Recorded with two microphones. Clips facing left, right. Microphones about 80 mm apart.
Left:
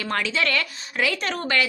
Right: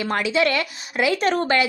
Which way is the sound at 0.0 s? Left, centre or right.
Centre.